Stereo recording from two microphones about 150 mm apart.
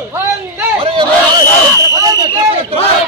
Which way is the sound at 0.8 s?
35° right (ahead or behind).